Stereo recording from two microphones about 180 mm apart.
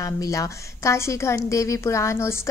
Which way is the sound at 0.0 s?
20° left (ahead or behind).